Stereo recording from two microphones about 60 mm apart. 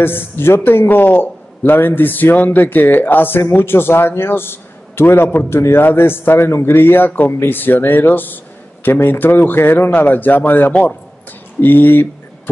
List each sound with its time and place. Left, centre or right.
0.0 s a man's voice: left
5.5 s a man's voice: left
10.7 s a man's voice: left
11.6 s a man's voice: left